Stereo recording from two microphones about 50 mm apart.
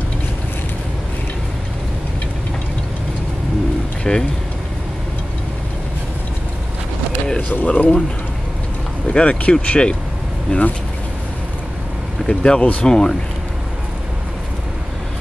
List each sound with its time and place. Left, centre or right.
4.0 s speech: centre
7.4 s speech: left
9.1 s speech: left
12.3 s speech: centre